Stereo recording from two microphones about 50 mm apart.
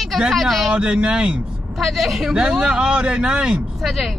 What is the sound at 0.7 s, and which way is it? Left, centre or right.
Speech, right.